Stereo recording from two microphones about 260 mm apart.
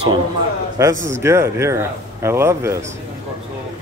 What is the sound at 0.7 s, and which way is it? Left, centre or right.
Speech, centre.